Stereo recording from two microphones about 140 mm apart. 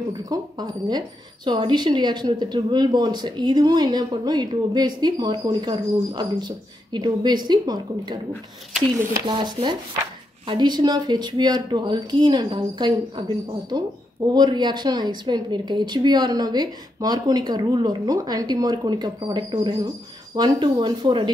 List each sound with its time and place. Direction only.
0.2 s speech: 30° right (ahead or behind)
9.2 s speech: 35° right (ahead or behind)